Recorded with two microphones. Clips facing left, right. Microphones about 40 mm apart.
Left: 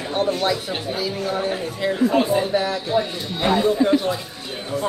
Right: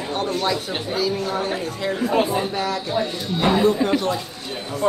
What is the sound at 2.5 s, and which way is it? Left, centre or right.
Speech, centre.